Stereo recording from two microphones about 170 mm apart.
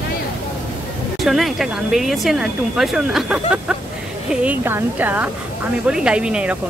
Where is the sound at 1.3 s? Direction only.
Centre (ahead or behind).